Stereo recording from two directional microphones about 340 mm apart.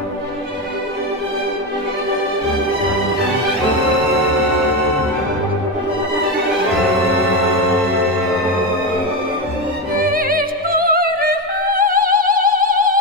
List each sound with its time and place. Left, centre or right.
9.9 s opera: right